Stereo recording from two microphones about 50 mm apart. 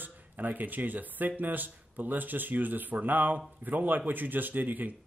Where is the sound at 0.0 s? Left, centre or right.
Right.